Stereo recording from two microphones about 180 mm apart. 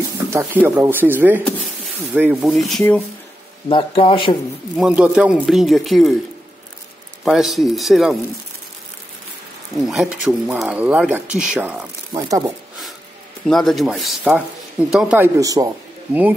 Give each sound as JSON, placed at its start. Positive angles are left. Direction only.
{"t": 0.3, "sound": "speech", "side_deg": -10}
{"t": 3.6, "sound": "a man's voice", "side_deg": 30}
{"t": 4.7, "sound": "speech", "side_deg": -5}
{"t": 7.2, "sound": "speech", "side_deg": 0}
{"t": 9.8, "sound": "speech", "side_deg": 0}
{"t": 12.1, "sound": "speech", "side_deg": -20}
{"t": 13.5, "sound": "speech", "side_deg": 0}
{"t": 16.1, "sound": "speech", "side_deg": -10}